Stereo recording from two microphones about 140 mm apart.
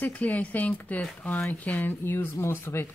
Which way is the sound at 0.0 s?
10° left (ahead or behind).